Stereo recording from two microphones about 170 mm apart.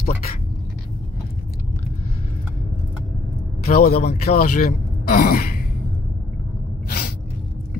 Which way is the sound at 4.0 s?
40° left (ahead or behind).